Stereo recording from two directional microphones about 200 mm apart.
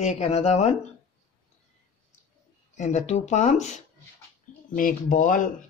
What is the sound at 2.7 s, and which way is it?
Speech, 35° left (ahead or behind).